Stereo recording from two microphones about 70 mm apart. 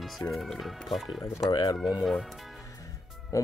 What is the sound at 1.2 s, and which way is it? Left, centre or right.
Speech, left.